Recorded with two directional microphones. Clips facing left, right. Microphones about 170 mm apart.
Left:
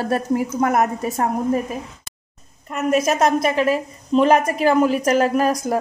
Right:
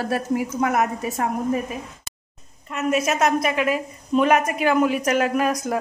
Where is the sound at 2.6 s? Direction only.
45° left (ahead or behind).